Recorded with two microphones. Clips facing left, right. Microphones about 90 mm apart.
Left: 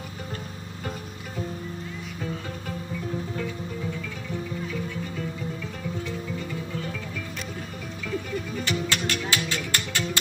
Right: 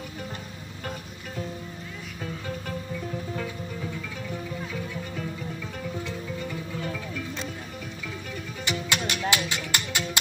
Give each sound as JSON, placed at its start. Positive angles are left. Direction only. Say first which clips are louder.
{"t": 8.6, "sound": "music", "louder": "right 1 dB", "side_deg": -15}